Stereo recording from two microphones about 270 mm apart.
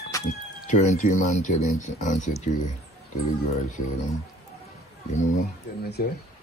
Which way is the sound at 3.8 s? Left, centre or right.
Left.